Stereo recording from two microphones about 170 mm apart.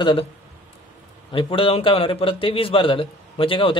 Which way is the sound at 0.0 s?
30° left (ahead or behind).